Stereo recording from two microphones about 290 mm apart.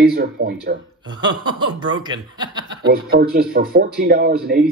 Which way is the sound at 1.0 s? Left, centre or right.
Centre.